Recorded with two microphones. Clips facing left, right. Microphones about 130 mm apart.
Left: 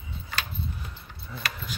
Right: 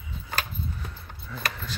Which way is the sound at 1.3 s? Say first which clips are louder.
Right 2 dB; 20° left (ahead or behind).